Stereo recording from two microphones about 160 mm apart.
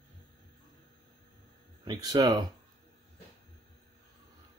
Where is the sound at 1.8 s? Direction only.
25° right (ahead or behind).